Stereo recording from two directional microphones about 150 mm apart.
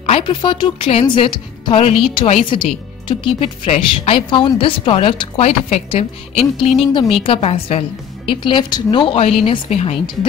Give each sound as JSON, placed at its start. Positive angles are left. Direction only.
{"t": 0.0, "sound": "speech", "side_deg": 35}